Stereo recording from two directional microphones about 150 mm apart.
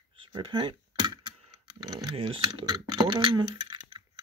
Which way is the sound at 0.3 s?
35° right (ahead or behind).